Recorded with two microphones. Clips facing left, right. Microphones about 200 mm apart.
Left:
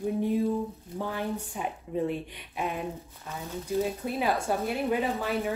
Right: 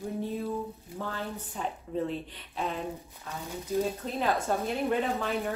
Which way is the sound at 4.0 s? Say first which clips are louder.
Left 1 dB; 10° left (ahead or behind).